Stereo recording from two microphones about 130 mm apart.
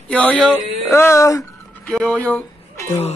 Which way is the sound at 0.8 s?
20° left (ahead or behind).